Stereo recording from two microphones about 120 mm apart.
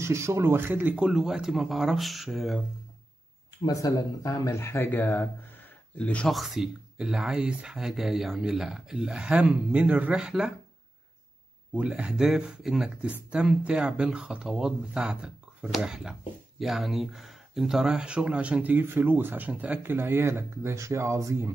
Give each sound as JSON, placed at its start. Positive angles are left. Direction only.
{"t": 0.0, "sound": "speech", "side_deg": -25}
{"t": 3.6, "sound": "speech", "side_deg": 30}
{"t": 6.3, "sound": "speech", "side_deg": 0}
{"t": 11.7, "sound": "speech", "side_deg": -10}